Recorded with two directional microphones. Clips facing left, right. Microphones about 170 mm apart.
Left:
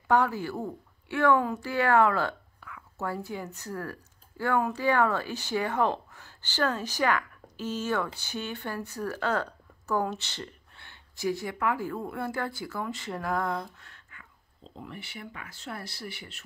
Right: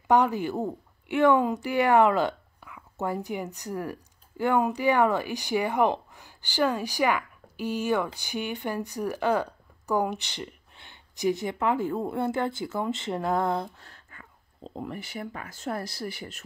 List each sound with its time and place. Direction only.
0.1 s a woman's voice: 20° right (ahead or behind); by 16.4 s 40° right (ahead or behind)